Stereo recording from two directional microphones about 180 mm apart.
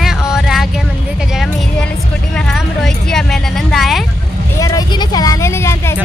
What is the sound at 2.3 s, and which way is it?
A woman's voice, centre (ahead or behind).